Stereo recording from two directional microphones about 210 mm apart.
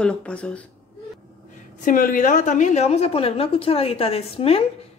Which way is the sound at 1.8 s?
40° left (ahead or behind).